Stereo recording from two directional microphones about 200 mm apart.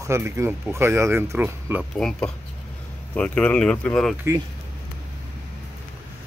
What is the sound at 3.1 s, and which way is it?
Speech, 5° left (ahead or behind).